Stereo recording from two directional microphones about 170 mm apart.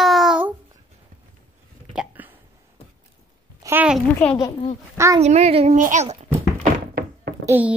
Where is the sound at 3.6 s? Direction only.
10° right (ahead or behind).